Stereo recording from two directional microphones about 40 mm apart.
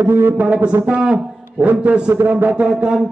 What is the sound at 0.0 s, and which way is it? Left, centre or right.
Speech, right.